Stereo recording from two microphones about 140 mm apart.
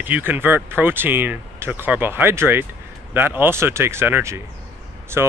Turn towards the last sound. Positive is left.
turn(degrees=-20)  # may be behind; listen again after turning